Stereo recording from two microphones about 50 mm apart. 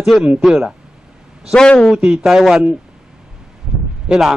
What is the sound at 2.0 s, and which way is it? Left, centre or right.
Speech, centre.